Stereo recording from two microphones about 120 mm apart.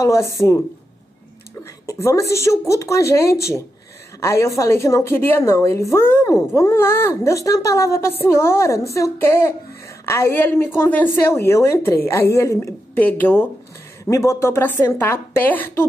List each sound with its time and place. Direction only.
0.0 s a woman's voice: 25° left (ahead or behind)
1.9 s a woman's voice: 25° left (ahead or behind)